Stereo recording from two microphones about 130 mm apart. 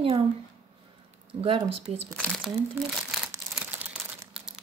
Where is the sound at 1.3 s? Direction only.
45° right (ahead or behind).